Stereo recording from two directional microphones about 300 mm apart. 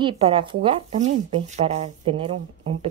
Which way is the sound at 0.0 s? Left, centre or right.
Centre.